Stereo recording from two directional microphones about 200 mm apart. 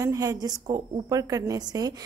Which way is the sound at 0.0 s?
15° right (ahead or behind).